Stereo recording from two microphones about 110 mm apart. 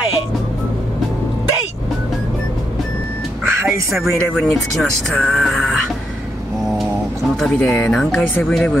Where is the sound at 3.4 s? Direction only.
20° right (ahead or behind).